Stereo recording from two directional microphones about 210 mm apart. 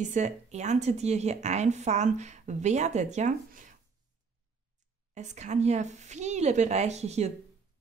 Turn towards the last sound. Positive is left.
turn(degrees=-30)  # may be behind; listen again after turning